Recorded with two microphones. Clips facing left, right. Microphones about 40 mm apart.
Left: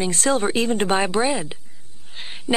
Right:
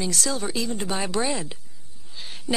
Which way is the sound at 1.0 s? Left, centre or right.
Left.